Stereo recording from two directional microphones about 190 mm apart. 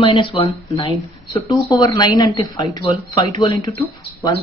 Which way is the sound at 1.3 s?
15° left (ahead or behind).